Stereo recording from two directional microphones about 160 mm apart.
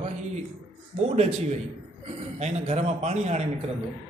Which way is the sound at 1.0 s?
40° right (ahead or behind).